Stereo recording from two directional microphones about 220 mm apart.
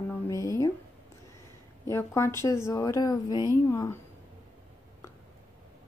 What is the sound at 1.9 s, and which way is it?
Speech, 10° left (ahead or behind).